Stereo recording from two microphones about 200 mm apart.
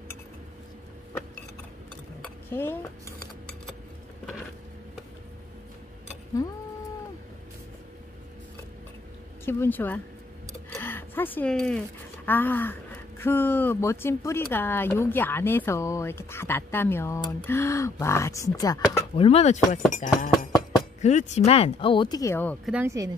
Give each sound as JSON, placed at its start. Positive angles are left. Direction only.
{"t": 2.5, "sound": "speech", "side_deg": 10}
{"t": 9.4, "sound": "speech", "side_deg": 10}
{"t": 10.7, "sound": "a sound", "side_deg": 10}
{"t": 12.3, "sound": "speech", "side_deg": 10}
{"t": 19.2, "sound": "speech", "side_deg": 30}
{"t": 22.7, "sound": "speech", "side_deg": -10}